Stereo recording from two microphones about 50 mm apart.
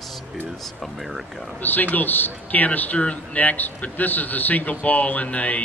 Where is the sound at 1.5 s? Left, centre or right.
Left.